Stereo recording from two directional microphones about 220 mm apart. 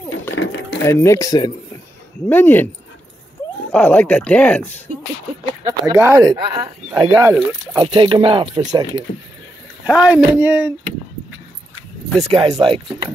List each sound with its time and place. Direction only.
0.8 s speech: 10° left (ahead or behind)
3.7 s speech: 5° left (ahead or behind)
5.7 s speech: 10° right (ahead or behind)
9.8 s speech: 5° right (ahead or behind)
12.2 s speech: 25° right (ahead or behind)